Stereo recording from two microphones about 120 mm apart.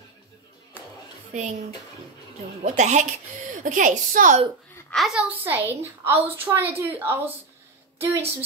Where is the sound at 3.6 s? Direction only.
90° right.